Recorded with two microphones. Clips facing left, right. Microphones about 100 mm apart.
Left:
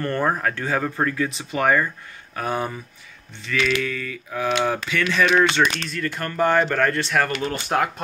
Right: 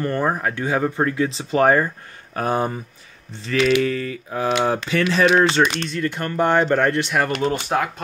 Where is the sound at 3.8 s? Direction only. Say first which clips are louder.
Right 6 dB; 35° right (ahead or behind).